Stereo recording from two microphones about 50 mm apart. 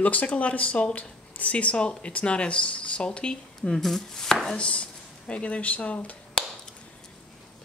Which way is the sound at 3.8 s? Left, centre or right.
Centre.